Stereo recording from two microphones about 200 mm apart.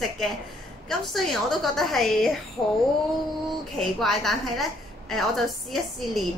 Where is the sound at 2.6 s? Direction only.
15° left (ahead or behind).